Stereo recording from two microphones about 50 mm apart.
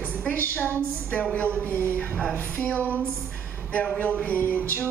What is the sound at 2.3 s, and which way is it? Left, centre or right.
Speech, left.